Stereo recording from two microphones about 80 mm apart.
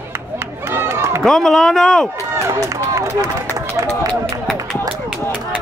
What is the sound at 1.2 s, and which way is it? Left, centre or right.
Speech, centre.